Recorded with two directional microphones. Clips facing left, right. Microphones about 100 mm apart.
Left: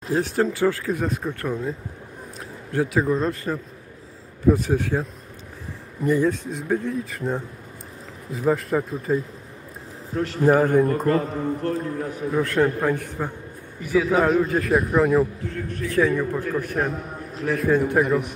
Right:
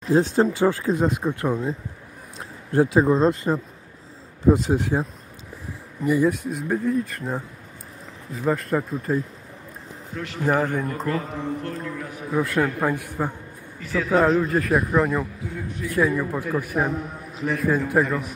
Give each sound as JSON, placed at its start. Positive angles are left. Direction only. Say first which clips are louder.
{"t": 0.1, "sound": "speech", "louder": "right 3 dB", "side_deg": -25}
{"t": 6.0, "sound": "a man's voice", "louder": "even", "side_deg": -10}
{"t": 10.1, "sound": "a man's voice", "louder": "left 7 dB", "side_deg": 40}
{"t": 10.4, "sound": "a man's voice", "louder": "left 5 dB", "side_deg": 15}
{"t": 11.6, "sound": "a man's voice", "louder": "left 5 dB", "side_deg": 35}
{"t": 12.3, "sound": "a man's voice", "louder": "left 1 dB", "side_deg": -5}
{"t": 13.7, "sound": "a man's voice", "louder": "left 1 dB", "side_deg": 10}
{"t": 15.5, "sound": "a man's voice", "louder": "even", "side_deg": -10}
{"t": 17.9, "sound": "a man's voice", "louder": "left 1 dB", "side_deg": 10}